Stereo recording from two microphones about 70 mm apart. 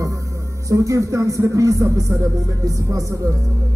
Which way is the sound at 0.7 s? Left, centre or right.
Right.